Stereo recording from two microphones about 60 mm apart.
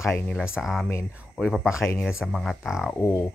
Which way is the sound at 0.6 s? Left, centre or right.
Centre.